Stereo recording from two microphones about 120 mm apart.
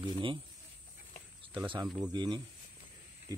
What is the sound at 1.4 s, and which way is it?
Speech, 45° right (ahead or behind).